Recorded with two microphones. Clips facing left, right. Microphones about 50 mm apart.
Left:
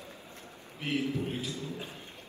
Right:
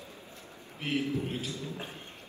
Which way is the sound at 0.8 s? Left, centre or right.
Right.